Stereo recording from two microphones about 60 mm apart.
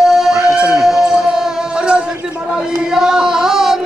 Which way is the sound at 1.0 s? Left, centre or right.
Centre.